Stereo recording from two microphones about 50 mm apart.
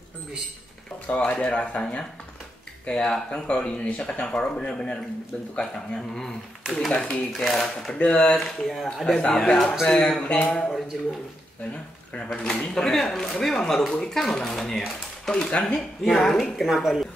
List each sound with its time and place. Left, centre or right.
1.0 s speech: left
6.7 s speech: centre
7.9 s speech: centre
8.3 s speech: centre
12.3 s speech: centre
16.0 s speech: centre